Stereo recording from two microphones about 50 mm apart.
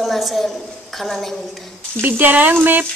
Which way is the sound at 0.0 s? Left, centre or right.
Centre.